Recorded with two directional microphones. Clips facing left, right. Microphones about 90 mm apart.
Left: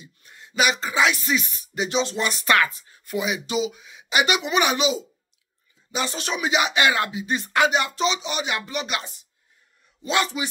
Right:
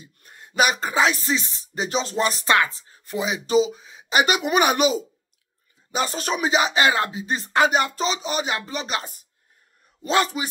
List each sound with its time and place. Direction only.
0.0 s speech: 45° right (ahead or behind); by 1.9 s 25° right (ahead or behind)
1.9 s speech: 40° right (ahead or behind)
2.5 s speech: 25° right (ahead or behind)